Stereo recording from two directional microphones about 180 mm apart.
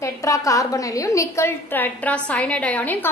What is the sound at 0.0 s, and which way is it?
A woman's voice, 20° left (ahead or behind).